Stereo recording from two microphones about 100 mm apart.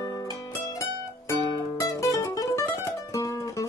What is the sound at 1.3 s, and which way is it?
Music, 30° left (ahead or behind).